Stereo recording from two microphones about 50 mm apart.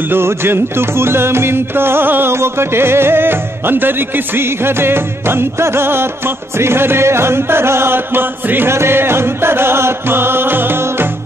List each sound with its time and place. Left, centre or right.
0.1 s music: right
2.3 s music: right